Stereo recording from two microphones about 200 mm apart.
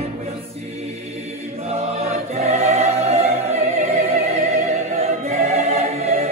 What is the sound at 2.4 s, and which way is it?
Choir, 35° right (ahead or behind).